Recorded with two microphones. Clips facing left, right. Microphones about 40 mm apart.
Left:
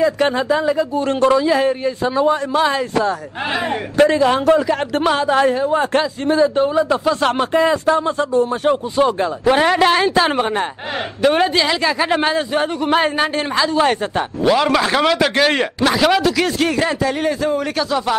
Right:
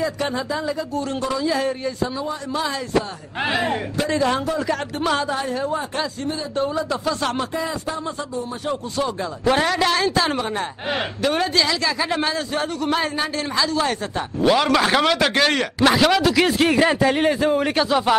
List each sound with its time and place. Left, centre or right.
0.0 s speech: left
2.1 s a man's voice: left
4.1 s a man's voice: left
5.8 s speech: left
6.5 s speech: left
7.6 s a man's voice: left
8.9 s speech: left
9.4 s speech: centre
9.7 s a man's voice: left
14.4 s a man's voice: centre
17.1 s a man's voice: right